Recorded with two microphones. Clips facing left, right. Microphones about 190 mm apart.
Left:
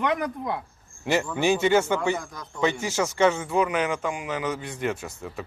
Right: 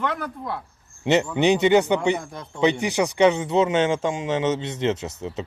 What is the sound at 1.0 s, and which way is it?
A man's voice, 20° right (ahead or behind).